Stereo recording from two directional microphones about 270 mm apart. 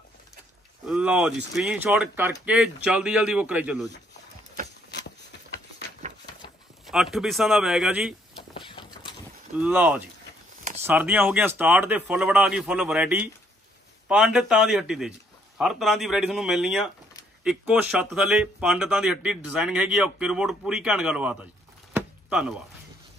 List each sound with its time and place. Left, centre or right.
0.8 s speech: centre
6.0 s a sound: right
6.9 s speech: centre
8.4 s a sound: centre
9.6 s speech: centre
21.9 s chopping: centre